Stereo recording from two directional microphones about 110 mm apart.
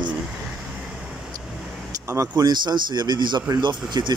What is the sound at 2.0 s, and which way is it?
Speech, 25° right (ahead or behind).